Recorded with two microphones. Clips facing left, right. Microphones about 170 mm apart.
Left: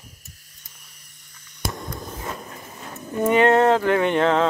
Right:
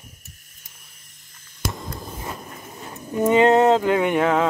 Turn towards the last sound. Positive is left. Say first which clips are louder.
# even
turn(degrees=-10)  # may be behind; listen again after turning